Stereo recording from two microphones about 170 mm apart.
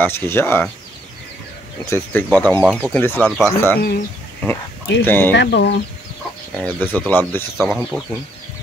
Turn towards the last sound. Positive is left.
turn(degrees=0)  # may be behind; listen again after turning